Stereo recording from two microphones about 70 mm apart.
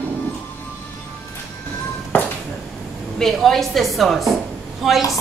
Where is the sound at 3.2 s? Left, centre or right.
Centre.